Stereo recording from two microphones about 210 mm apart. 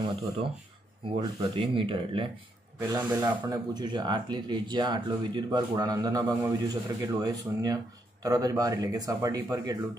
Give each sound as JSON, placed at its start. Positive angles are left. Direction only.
{"t": 1.0, "sound": "speech", "side_deg": -25}